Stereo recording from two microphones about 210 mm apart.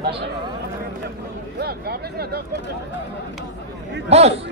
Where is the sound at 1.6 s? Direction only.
50° right (ahead or behind).